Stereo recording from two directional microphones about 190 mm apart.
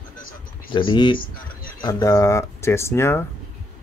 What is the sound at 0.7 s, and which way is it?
Speech, 25° left (ahead or behind).